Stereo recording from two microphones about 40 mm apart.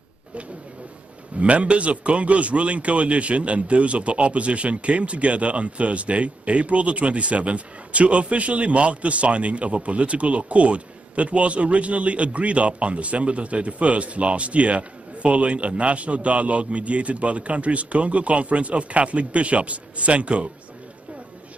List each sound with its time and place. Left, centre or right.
1.4 s speech: right